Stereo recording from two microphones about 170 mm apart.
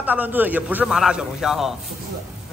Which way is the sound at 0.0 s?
10° right (ahead or behind).